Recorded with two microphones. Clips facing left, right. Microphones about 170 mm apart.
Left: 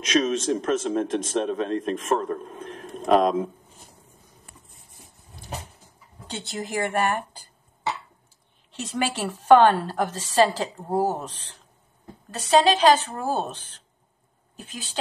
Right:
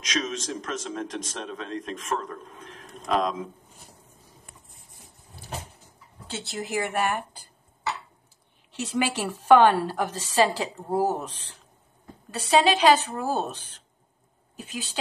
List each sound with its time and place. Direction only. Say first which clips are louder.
0.1 s a man's voice: left 8 dB; 55° left (ahead or behind)
2.3 s a man's voice: left 9 dB; 40° left (ahead or behind)
3.0 s a man's voice: left 6 dB; 55° left (ahead or behind)
6.2 s speech: left 1 dB; 5° right (ahead or behind)
8.7 s a woman's voice: right 1 dB; 10° right (ahead or behind)